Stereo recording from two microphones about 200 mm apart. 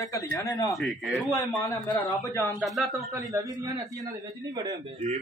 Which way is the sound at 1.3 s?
15° left (ahead or behind).